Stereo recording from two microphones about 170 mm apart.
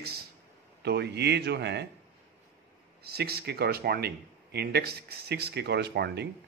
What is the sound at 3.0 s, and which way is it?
Speech, 70° right (ahead or behind).